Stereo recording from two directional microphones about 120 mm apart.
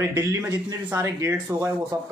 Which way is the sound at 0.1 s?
25° right (ahead or behind).